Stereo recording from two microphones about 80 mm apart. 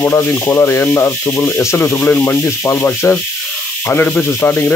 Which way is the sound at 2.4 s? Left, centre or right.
Left.